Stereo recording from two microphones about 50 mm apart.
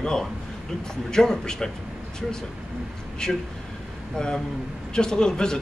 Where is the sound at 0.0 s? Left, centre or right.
Centre.